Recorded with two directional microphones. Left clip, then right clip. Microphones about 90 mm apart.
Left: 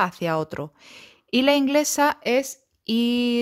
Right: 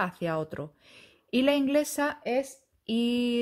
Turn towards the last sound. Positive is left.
turn(degrees=45)  # may be behind; listen again after turning